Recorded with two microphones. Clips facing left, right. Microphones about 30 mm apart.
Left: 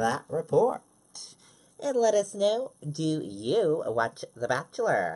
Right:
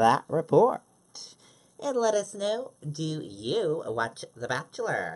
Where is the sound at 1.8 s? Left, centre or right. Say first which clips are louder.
Left 2 dB; centre.